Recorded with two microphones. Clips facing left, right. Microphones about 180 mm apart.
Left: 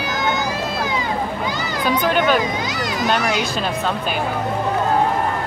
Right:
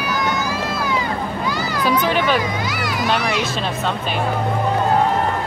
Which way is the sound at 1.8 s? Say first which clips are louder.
Left 1 dB; centre (ahead or behind).